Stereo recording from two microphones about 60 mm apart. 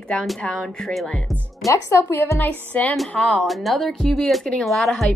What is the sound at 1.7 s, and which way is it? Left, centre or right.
Speech, left.